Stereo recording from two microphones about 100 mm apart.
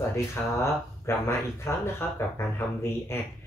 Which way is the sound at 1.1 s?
25° left (ahead or behind).